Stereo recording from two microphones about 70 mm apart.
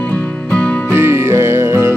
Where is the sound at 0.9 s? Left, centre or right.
Right.